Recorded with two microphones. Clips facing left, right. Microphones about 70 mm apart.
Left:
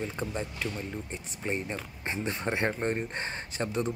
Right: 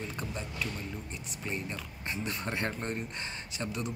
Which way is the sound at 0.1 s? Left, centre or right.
Left.